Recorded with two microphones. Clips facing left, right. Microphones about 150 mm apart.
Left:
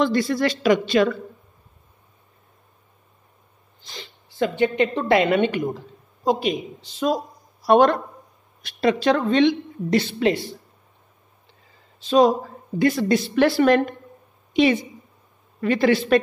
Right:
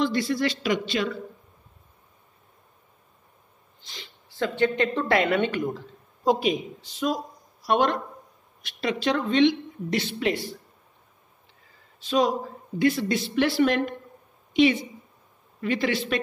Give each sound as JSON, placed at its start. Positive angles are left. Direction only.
{"t": 0.0, "sound": "a woman's voice", "side_deg": 50}
{"t": 3.8, "sound": "speech", "side_deg": 40}
{"t": 4.4, "sound": "a woman's voice", "side_deg": 15}
{"t": 6.2, "sound": "a man's voice", "side_deg": 0}
{"t": 6.8, "sound": "a woman's voice", "side_deg": 35}
{"t": 12.0, "sound": "a woman's voice", "side_deg": 35}